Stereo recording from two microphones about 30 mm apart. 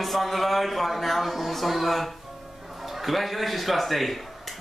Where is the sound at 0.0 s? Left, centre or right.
Centre.